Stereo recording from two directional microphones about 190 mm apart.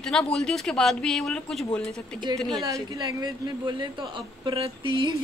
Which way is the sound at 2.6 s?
15° right (ahead or behind).